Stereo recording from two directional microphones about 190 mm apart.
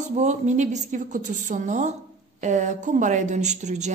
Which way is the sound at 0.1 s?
40° right (ahead or behind).